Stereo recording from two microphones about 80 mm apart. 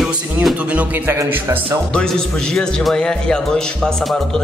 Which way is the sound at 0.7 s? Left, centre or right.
Centre.